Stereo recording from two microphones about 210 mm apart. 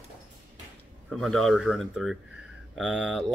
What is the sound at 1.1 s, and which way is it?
Speech, centre (ahead or behind).